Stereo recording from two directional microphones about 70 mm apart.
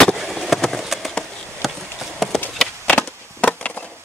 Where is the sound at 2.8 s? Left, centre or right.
Left.